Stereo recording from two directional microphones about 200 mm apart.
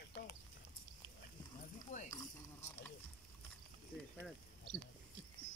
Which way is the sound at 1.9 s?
35° left (ahead or behind).